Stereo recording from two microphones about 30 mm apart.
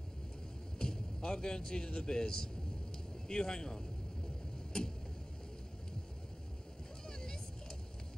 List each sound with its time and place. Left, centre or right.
0.7 s a sound: left
2.0 s speech: left
7.1 s vehicle: left